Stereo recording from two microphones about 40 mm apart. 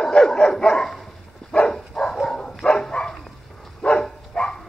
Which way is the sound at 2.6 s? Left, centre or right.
Centre.